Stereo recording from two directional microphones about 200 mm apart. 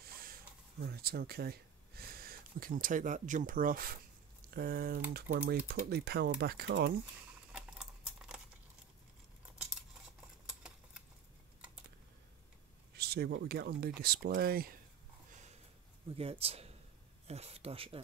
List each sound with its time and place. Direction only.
0.0 s a sound: 45° right (ahead or behind)
4.5 s speech: 50° right (ahead or behind)
7.5 s a sound: 5° right (ahead or behind)
10.6 s typewriter: 5° right (ahead or behind)
12.9 s speech: 50° right (ahead or behind)
16.2 s speech: 30° right (ahead or behind)